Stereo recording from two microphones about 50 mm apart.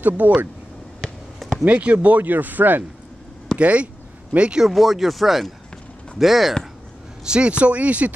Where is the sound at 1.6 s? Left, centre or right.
Right.